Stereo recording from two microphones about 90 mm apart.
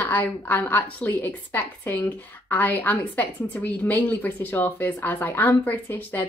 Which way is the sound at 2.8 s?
15° left (ahead or behind).